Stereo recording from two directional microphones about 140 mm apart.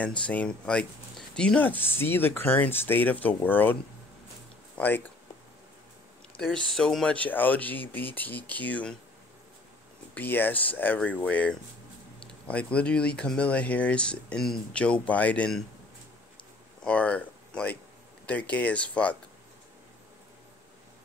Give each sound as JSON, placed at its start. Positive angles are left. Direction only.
{"t": 0.2, "sound": "speech", "side_deg": 10}
{"t": 4.7, "sound": "speech", "side_deg": 15}
{"t": 6.3, "sound": "speech", "side_deg": 5}
{"t": 10.1, "sound": "speech", "side_deg": 15}
{"t": 16.8, "sound": "speech", "side_deg": 10}